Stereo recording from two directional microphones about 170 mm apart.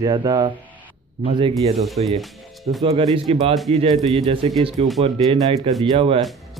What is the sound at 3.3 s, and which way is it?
Speech, 35° right (ahead or behind).